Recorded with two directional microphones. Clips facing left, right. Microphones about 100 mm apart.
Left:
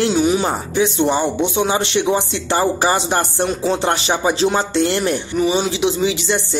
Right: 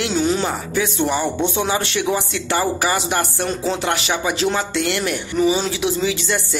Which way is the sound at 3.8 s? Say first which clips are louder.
Left 3 dB; 30° left (ahead or behind).